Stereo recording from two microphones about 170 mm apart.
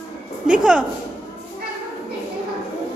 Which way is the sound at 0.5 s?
5° right (ahead or behind).